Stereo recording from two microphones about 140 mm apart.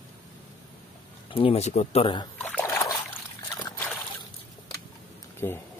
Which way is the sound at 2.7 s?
20° left (ahead or behind).